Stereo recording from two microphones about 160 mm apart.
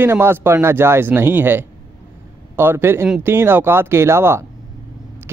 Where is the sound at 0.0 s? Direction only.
15° right (ahead or behind).